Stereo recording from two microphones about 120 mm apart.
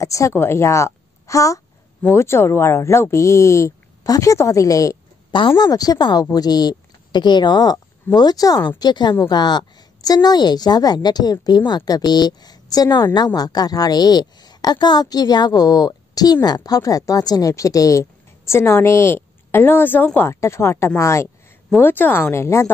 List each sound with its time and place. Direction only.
0.0 s a woman's voice: 25° left (ahead or behind)